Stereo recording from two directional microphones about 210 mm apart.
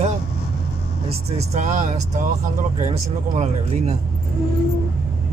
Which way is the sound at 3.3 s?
30° right (ahead or behind).